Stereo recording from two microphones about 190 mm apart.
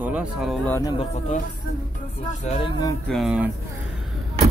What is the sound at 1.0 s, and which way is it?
Speech, 40° left (ahead or behind).